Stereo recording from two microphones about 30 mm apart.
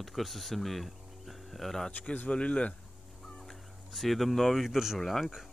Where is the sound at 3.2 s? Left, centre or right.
Centre.